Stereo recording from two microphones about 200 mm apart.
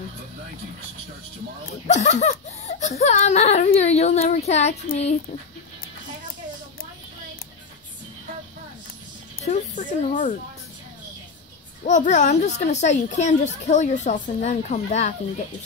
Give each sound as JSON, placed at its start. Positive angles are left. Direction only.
{"t": 1.7, "sound": "speech", "side_deg": 35}
{"t": 9.5, "sound": "speech", "side_deg": 40}
{"t": 11.8, "sound": "speech", "side_deg": 40}